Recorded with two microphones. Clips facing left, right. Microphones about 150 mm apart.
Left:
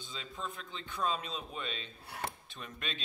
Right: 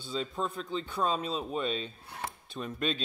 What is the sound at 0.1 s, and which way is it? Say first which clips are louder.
Speech: right 10 dB; 40° right (ahead or behind).